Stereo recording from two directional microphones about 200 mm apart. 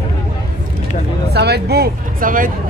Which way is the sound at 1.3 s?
55° right (ahead or behind).